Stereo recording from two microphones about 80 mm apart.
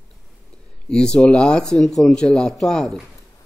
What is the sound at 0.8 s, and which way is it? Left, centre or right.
Speech, centre.